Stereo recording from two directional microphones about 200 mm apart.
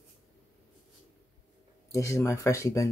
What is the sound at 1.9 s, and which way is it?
Speech, 15° left (ahead or behind).